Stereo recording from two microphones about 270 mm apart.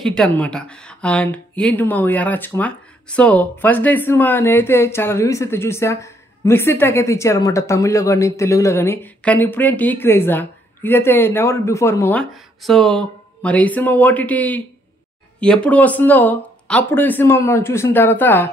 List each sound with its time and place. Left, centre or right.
0.0 s speech: centre